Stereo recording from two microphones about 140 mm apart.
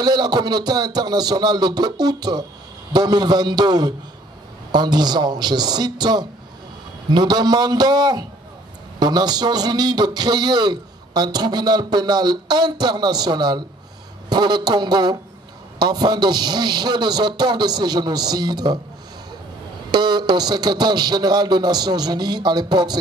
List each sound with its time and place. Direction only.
0.0 s a man's voice: 30° right (ahead or behind)
19.9 s a man's voice: 30° right (ahead or behind)